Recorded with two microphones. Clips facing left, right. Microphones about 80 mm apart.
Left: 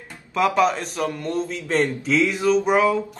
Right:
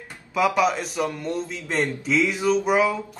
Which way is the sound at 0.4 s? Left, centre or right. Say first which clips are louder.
Left 1 dB; centre.